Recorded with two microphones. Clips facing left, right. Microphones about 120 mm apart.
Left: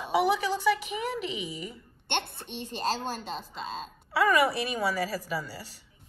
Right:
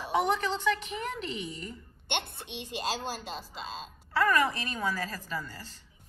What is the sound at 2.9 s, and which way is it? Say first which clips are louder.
Speech: left 4 dB; 50° left (ahead or behind).